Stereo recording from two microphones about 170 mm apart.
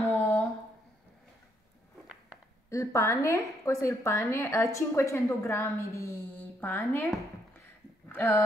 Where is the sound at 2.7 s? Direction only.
15° left (ahead or behind).